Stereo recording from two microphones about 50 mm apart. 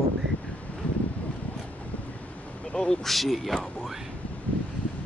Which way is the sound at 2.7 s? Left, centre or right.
Centre.